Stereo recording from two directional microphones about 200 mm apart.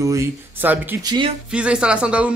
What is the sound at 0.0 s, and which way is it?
Speech, 15° right (ahead or behind).